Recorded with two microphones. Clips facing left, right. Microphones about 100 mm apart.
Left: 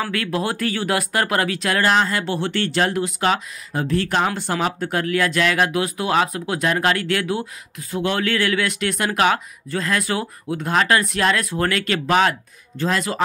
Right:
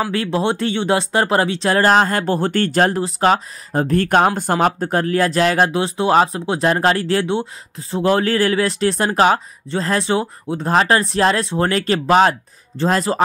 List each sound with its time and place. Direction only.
0.1 s speech: 30° right (ahead or behind)